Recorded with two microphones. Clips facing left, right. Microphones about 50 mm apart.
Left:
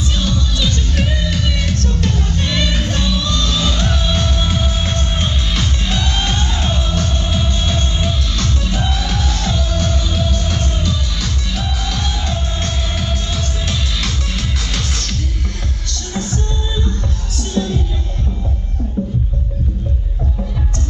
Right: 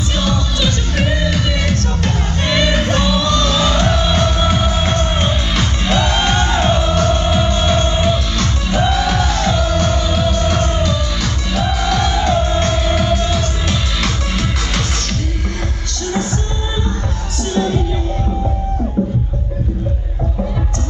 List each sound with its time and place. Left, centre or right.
0.6 s music: centre
7.0 s music: right
7.2 s music: right
17.6 s music: right
19.0 s music: centre